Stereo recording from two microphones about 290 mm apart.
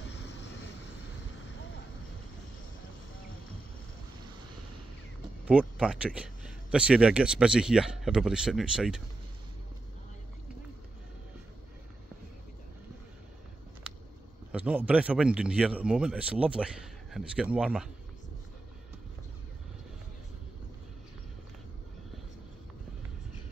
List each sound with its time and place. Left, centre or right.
0.1 s vehicle: left
5.4 s speech: centre
14.5 s speech: centre